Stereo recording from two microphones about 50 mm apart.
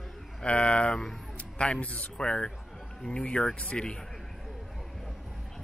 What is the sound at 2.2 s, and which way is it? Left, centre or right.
Speech, centre.